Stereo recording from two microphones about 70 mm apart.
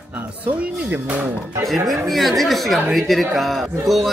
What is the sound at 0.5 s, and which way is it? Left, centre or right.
Speech, right.